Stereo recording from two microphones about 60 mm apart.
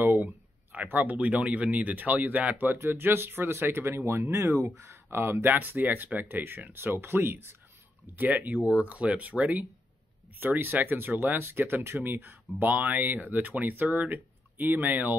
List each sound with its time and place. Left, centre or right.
0.0 s a sound: right
0.9 s speech: right
5.5 s speech: right
8.2 s speech: right